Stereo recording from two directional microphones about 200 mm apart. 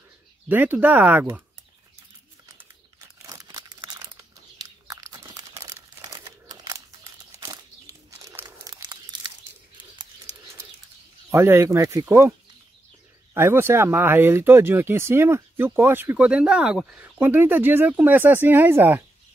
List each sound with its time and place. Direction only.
0.5 s speech: 10° right (ahead or behind)
3.2 s crumpling: 15° right (ahead or behind)
11.2 s speech: 15° right (ahead or behind)